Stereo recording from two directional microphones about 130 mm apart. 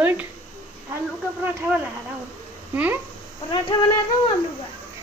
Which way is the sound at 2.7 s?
15° right (ahead or behind).